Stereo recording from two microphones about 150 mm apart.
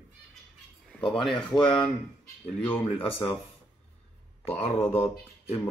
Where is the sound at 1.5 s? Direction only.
25° left (ahead or behind).